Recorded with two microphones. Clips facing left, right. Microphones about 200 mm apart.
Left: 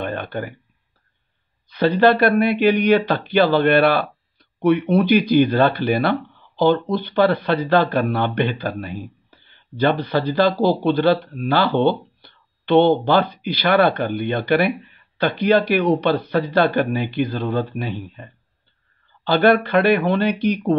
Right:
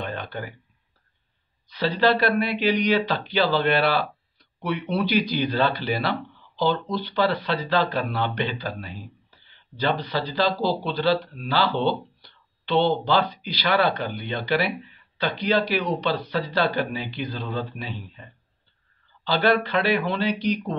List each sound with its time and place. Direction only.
0.0 s a sound: 55° left (ahead or behind)
1.7 s speech: 55° left (ahead or behind)
19.2 s speech: 55° left (ahead or behind)